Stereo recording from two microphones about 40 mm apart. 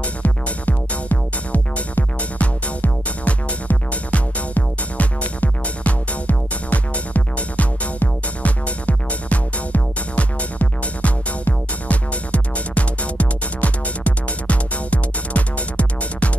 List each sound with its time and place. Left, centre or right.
0.0 s music: left